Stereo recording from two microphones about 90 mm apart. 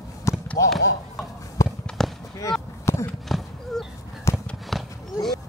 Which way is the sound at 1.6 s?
35° left (ahead or behind).